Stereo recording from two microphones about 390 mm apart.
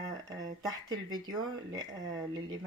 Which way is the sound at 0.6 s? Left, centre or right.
Centre.